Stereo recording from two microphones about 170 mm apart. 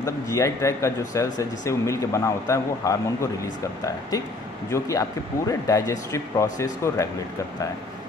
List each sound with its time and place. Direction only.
0.0 s speech: 20° left (ahead or behind)
4.6 s speech: 20° left (ahead or behind)